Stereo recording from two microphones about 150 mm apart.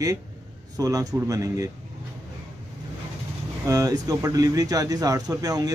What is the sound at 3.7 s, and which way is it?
Speech, 20° right (ahead or behind).